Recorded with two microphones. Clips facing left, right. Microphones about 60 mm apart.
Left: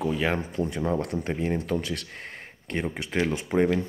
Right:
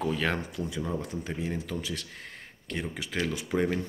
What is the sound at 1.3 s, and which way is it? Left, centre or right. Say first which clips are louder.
Speech: left 6 dB; left.